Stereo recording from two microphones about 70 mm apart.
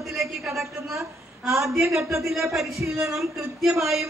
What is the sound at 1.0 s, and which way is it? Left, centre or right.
A woman's voice, right.